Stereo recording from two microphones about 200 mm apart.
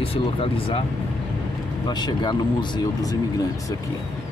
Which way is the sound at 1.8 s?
20° left (ahead or behind).